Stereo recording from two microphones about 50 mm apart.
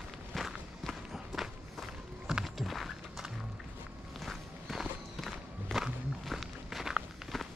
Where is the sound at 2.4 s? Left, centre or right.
Centre.